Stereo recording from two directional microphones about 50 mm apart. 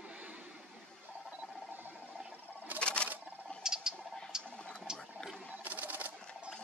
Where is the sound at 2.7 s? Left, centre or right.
Left.